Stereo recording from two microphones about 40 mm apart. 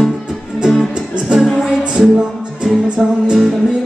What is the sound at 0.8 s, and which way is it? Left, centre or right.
Music, right.